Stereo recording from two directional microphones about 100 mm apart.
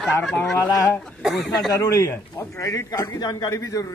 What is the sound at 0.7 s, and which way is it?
Speech, 25° left (ahead or behind).